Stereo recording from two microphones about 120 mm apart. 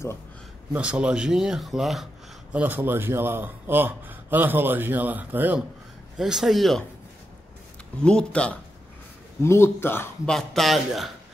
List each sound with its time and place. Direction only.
0.7 s speech: 10° right (ahead or behind)
2.5 s a man's voice: 15° right (ahead or behind)
6.1 s speech: 5° right (ahead or behind)
8.0 s speech: 10° left (ahead or behind)
9.4 s speech: 20° left (ahead or behind)
10.2 s speech: 5° left (ahead or behind)